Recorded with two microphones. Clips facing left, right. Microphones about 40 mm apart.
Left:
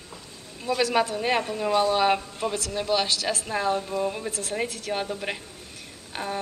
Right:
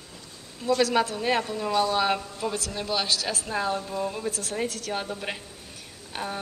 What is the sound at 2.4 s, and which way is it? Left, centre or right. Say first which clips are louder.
Speech: even; left.